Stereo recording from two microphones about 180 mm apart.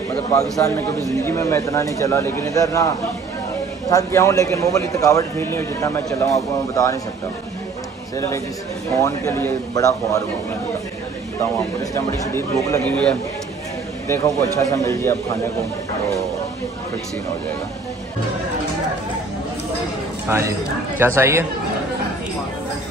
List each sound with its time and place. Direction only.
0.6 s speech: 15° left (ahead or behind)
3.9 s speech: 15° left (ahead or behind)
9.0 s speech: 15° left (ahead or behind)
11.9 s speech: 15° left (ahead or behind)
14.0 s speech: 15° left (ahead or behind)
20.2 s speech: 15° right (ahead or behind)